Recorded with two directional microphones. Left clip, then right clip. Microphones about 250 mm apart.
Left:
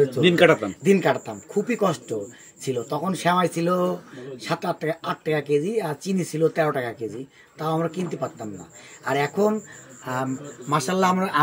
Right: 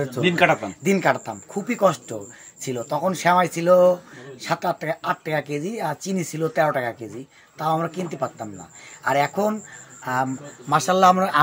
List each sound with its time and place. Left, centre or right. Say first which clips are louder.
0.2 s a man's voice: even; centre
0.7 s speech: even; right
10.7 s a man's voice: right 5 dB; right